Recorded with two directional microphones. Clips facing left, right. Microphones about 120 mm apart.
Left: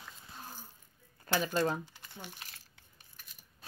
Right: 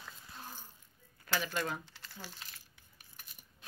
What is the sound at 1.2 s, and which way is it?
Speech, 30° left (ahead or behind).